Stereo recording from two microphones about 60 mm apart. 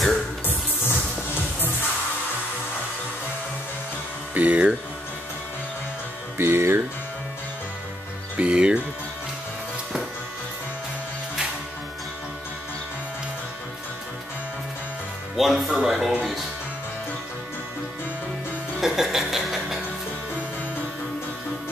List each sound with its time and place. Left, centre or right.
0.5 s music: left
4.3 s speech: right
6.3 s music: right
8.4 s music: centre
15.3 s music: centre
18.8 s music: centre